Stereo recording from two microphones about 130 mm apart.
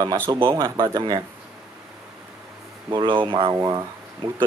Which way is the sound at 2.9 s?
40° right (ahead or behind).